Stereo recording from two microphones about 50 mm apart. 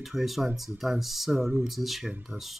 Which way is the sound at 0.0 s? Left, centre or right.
Centre.